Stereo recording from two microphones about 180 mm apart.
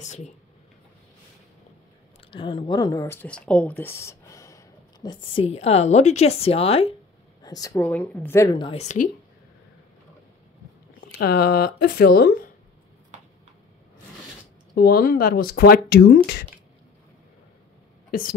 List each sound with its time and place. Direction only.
0.0 s speech: 40° left (ahead or behind)
2.3 s speech: 25° left (ahead or behind)
7.4 s speech: 20° left (ahead or behind)
7.8 s a woman's voice: 10° left (ahead or behind); by 8.7 s 25° left (ahead or behind)
8.7 s speech: 45° left (ahead or behind)
11.1 s speech: 60° left (ahead or behind)
14.8 s speech: 55° left (ahead or behind)